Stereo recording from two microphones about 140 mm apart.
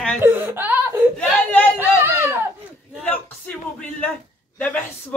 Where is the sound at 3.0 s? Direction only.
10° left (ahead or behind).